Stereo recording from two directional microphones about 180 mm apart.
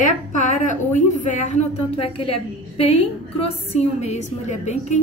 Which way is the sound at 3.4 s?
35° left (ahead or behind).